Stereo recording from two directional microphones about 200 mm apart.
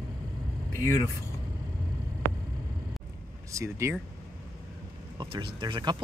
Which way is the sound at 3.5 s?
15° right (ahead or behind).